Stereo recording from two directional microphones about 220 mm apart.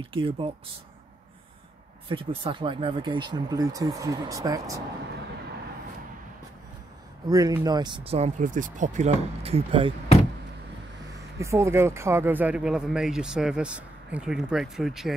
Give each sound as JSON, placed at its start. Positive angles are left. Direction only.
{"t": 0.1, "sound": "speech", "side_deg": -25}
{"t": 2.0, "sound": "speech", "side_deg": -25}
{"t": 7.2, "sound": "speech", "side_deg": -15}
{"t": 11.3, "sound": "speech", "side_deg": -15}